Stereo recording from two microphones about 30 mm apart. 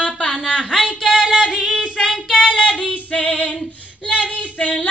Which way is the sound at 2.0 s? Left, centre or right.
Centre.